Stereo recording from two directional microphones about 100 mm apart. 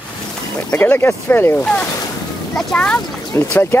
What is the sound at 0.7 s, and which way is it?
Speech, 20° left (ahead or behind).